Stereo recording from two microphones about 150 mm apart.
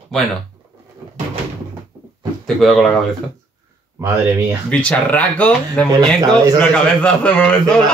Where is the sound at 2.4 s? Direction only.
Centre (ahead or behind).